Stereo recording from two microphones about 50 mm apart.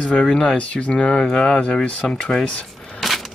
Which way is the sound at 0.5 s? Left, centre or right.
Left.